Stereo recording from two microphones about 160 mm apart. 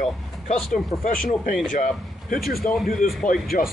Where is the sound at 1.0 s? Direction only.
55° left (ahead or behind).